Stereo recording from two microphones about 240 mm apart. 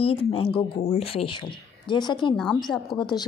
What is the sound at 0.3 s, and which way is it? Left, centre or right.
A woman's voice, left.